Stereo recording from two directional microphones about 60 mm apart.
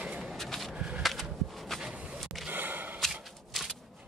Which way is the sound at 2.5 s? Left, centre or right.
Right.